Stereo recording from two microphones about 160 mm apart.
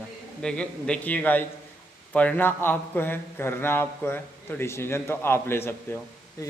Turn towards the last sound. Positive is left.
turn(degrees=15)  # may be behind; listen again after turning